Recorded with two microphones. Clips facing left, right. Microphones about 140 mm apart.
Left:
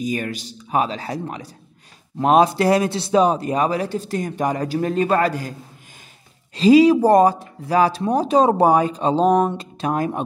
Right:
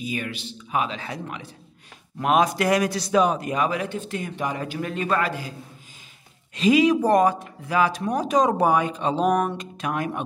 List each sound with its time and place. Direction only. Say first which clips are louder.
0.0 s speech: left 5 dB; 40° left (ahead or behind)
6.5 s speech: left 6 dB; 35° left (ahead or behind)